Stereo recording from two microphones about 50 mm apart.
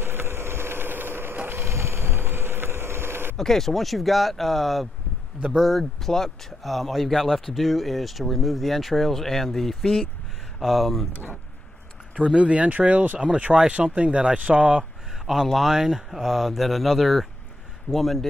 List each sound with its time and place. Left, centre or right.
0.0 s vehicle: right
3.3 s speech: centre
12.2 s speech: right
15.2 s speech: centre